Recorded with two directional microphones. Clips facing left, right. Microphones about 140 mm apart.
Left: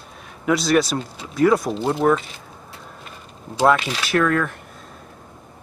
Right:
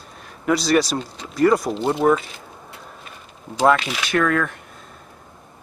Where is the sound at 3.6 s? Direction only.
5° left (ahead or behind).